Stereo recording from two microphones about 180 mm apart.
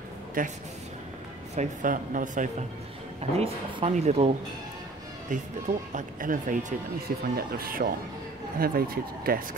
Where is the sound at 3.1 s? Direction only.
35° right (ahead or behind).